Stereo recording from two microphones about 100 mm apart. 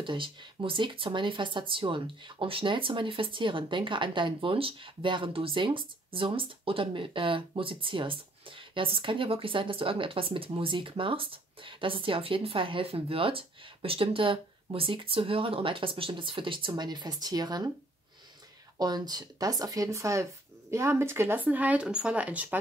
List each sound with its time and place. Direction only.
0.0 s speech: 55° right (ahead or behind)
18.8 s speech: 45° right (ahead or behind); by 22.6 s 15° right (ahead or behind)